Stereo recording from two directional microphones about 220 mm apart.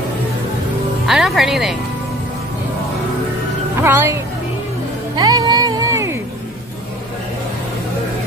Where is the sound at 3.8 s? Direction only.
10° right (ahead or behind).